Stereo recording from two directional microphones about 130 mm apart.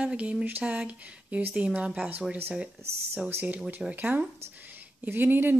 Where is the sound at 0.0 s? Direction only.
10° right (ahead or behind).